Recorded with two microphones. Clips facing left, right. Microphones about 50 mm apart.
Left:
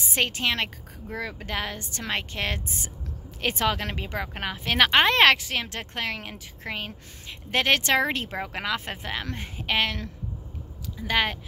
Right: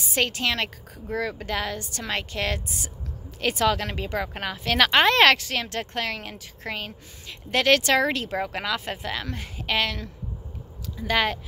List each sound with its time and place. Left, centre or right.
0.1 s a woman's voice: left
11.0 s speech: centre